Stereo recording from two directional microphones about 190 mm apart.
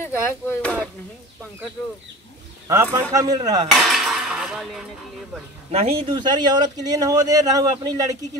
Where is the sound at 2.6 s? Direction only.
15° right (ahead or behind).